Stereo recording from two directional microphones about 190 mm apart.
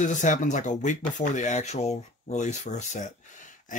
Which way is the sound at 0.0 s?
40° left (ahead or behind).